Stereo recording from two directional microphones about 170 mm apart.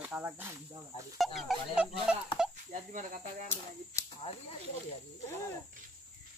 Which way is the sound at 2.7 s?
50° right (ahead or behind).